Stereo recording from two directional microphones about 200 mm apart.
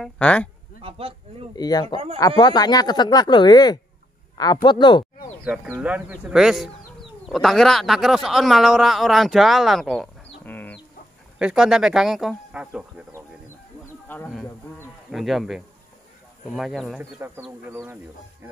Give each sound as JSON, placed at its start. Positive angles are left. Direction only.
{"t": 0.0, "sound": "speech", "side_deg": 5}
{"t": 0.7, "sound": "speech", "side_deg": -30}
{"t": 1.5, "sound": "speech", "side_deg": 20}
{"t": 4.6, "sound": "a sound", "side_deg": 25}
{"t": 5.4, "sound": "speech", "side_deg": -5}
{"t": 11.3, "sound": "speech", "side_deg": -5}
{"t": 14.0, "sound": "speech", "side_deg": 10}
{"t": 17.5, "sound": "speech", "side_deg": -10}